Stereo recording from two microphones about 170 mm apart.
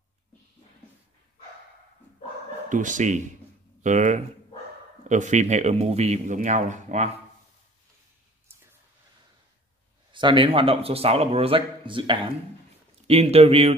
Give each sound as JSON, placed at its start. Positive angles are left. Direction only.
{"t": 2.7, "sound": "a man's voice", "side_deg": -50}
{"t": 10.1, "sound": "a man's voice", "side_deg": -30}